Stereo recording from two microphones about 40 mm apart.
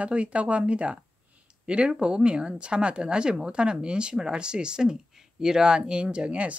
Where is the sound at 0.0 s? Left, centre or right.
Right.